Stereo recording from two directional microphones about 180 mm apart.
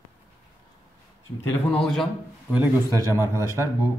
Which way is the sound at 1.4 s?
5° left (ahead or behind).